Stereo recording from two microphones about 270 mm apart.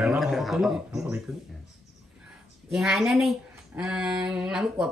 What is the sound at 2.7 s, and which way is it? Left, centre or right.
Speech, centre.